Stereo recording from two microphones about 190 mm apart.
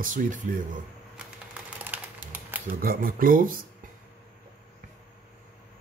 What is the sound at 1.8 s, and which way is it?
Typewriter, 10° right (ahead or behind).